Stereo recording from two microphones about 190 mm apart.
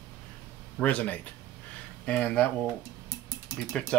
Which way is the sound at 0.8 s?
10° left (ahead or behind).